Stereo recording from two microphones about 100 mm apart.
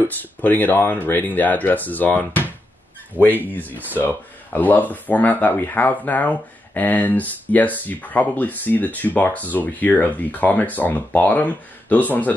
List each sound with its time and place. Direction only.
0.0 s speech: 20° left (ahead or behind)
3.2 s speech: 20° right (ahead or behind)
3.7 s speech: 15° left (ahead or behind)